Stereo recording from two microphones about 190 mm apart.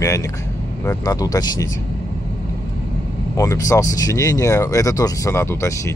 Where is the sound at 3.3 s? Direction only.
15° left (ahead or behind).